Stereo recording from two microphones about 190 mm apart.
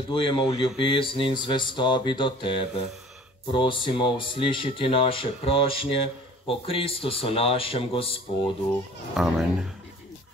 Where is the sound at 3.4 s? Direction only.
25° left (ahead or behind).